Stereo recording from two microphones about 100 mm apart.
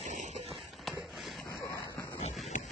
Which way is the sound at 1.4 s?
40° left (ahead or behind).